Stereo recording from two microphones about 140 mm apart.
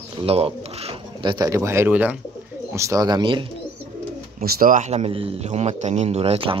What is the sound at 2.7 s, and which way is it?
Speech, 20° right (ahead or behind).